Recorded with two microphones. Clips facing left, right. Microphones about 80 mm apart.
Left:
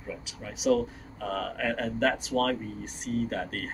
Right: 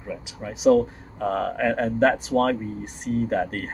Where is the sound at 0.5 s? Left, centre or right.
Right.